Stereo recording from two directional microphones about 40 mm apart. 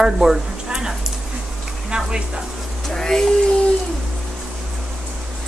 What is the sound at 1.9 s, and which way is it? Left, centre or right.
Speech, right.